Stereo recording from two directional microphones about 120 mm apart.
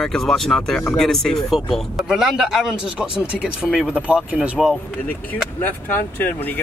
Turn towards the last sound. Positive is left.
turn(degrees=15)  # may be behind; listen again after turning